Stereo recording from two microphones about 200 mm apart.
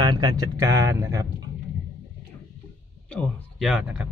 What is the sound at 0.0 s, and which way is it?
Speech, 20° right (ahead or behind).